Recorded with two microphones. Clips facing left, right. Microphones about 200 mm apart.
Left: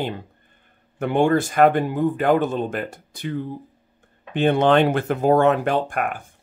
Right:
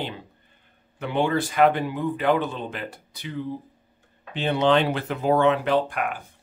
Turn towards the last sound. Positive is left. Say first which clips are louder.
# left 1 dB
turn(degrees=50)  # may be behind; listen again after turning